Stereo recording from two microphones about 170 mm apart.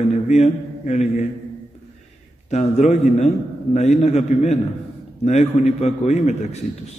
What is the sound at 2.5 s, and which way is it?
A man's voice, 40° left (ahead or behind).